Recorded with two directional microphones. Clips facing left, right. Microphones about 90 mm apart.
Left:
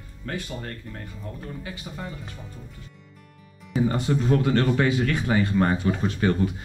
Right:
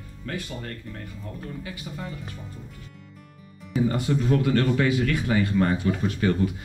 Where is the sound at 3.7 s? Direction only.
30° left (ahead or behind).